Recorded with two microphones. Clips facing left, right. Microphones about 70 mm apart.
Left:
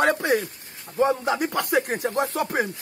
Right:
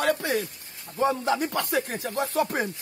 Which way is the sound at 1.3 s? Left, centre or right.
Centre.